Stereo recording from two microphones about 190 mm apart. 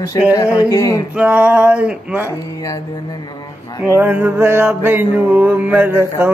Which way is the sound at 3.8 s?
10° right (ahead or behind).